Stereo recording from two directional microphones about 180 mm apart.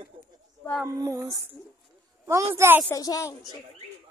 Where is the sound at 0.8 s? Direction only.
15° right (ahead or behind).